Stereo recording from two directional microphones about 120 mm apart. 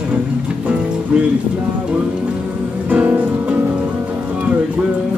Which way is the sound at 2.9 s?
15° right (ahead or behind).